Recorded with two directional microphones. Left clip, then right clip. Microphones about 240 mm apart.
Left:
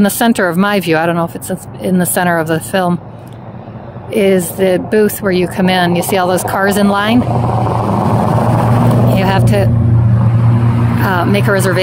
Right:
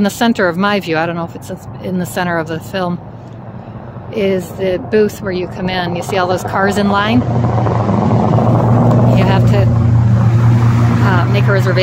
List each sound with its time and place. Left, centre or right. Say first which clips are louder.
0.0 s speech: left 1 dB; left
4.1 s speech: left 4 dB; left
7.2 s vehicle: left 2 dB; left
9.1 s vehicle: left 1 dB; left
10.6 s vehicle: right 1 dB; right
11.1 s speech: left 4 dB; left